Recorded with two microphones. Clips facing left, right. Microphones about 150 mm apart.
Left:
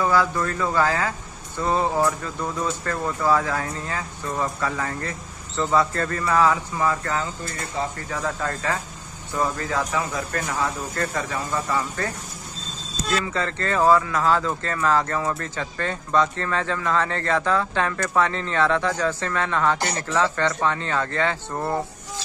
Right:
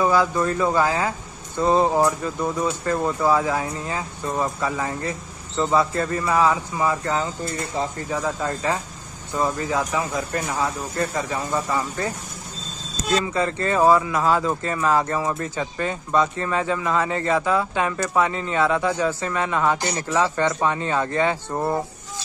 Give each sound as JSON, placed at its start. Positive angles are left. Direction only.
{"t": 0.0, "sound": "speech", "side_deg": -15}
{"t": 13.1, "sound": "speech", "side_deg": -20}